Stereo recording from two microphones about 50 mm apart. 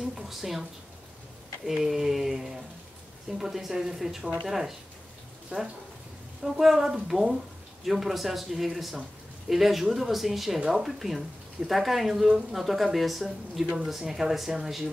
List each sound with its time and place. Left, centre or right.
0.1 s a sound: centre
1.7 s a woman's voice: centre
5.5 s speech: right
6.4 s a woman's voice: centre